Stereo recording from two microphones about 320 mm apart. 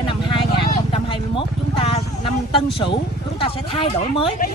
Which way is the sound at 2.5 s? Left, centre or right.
Centre.